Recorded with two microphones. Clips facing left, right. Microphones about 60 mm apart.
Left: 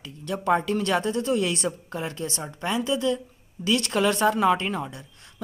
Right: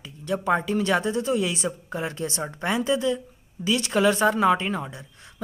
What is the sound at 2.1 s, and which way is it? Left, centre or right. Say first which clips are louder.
A woman's voice: right 2 dB; right.